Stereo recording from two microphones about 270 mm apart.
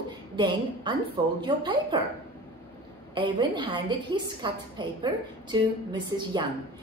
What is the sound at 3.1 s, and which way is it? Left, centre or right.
A woman's voice, centre.